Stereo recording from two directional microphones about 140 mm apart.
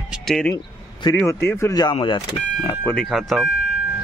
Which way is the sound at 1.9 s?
35° left (ahead or behind).